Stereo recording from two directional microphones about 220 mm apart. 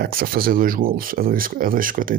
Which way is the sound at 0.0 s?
40° right (ahead or behind).